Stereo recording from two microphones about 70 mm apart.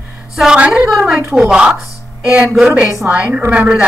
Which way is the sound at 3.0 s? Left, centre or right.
Centre.